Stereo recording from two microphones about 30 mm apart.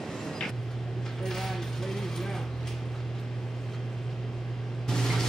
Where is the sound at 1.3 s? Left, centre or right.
Centre.